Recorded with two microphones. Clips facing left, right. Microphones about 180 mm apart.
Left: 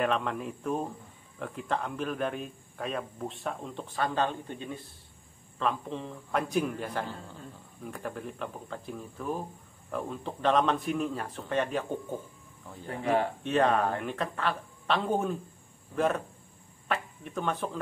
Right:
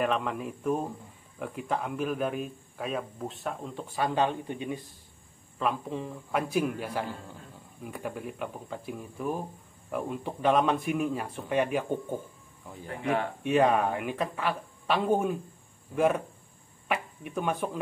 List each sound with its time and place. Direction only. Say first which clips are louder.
0.0 s a man's voice: even; centre (ahead or behind)
12.8 s speech: left 2 dB; 35° left (ahead or behind)
13.4 s speech: right 2 dB; 10° right (ahead or behind)